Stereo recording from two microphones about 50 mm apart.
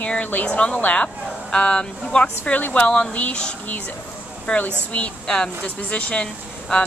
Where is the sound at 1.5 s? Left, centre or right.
Centre.